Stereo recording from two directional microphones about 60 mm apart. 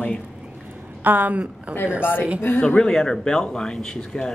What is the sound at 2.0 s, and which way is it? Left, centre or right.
Speech, left.